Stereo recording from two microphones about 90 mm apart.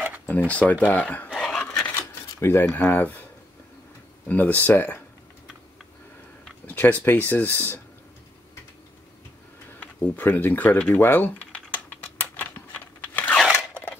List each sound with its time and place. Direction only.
0.3 s speech: 15° left (ahead or behind)
1.3 s a sound: 10° left (ahead or behind)
2.0 s a sound: 30° left (ahead or behind)
4.3 s speech: 20° left (ahead or behind)
6.7 s speech: 20° left (ahead or behind)
9.9 s speech: 25° left (ahead or behind)
11.0 s typing: 20° left (ahead or behind)
12.7 s crunch: 20° left (ahead or behind)